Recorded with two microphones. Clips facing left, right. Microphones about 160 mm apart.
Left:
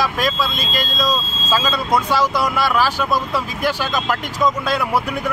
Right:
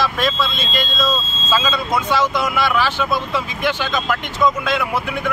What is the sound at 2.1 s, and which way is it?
Speech, 35° left (ahead or behind).